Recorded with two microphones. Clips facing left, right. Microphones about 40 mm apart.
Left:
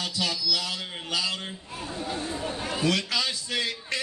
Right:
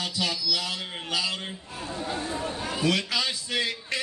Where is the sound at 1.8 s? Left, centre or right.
Right.